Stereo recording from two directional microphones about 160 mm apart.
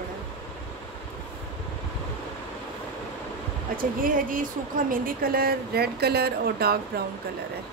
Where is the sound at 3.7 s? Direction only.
60° right (ahead or behind); by 7.0 s 75° right (ahead or behind).